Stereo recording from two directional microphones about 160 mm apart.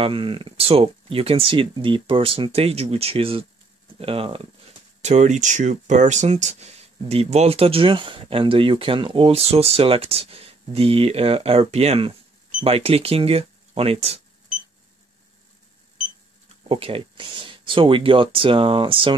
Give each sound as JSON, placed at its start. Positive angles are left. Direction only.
{"t": 0.0, "sound": "speech", "side_deg": -30}
{"t": 5.0, "sound": "speech", "side_deg": -45}
{"t": 16.6, "sound": "speech", "side_deg": -35}